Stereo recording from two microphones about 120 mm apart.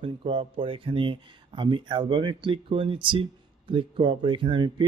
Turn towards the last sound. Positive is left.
turn(degrees=-45)  # may be behind; listen again after turning